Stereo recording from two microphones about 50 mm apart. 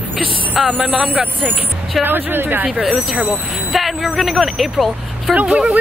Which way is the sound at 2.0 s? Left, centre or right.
Right.